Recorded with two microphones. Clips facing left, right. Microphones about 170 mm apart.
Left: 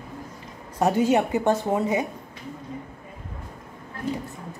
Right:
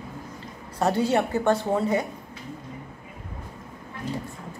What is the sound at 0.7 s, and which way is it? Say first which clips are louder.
Speech: left 2 dB; 15° left (ahead or behind).